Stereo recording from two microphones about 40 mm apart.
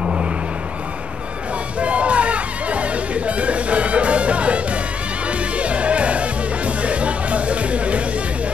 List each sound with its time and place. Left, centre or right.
1.8 s music: right